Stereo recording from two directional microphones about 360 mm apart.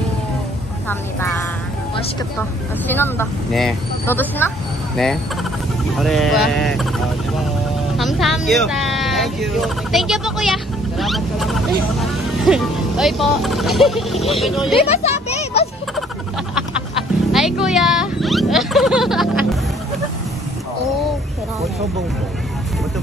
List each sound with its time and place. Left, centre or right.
2.9 s speech: centre
8.0 s speech: centre
14.9 s a sound: centre
17.3 s oink: centre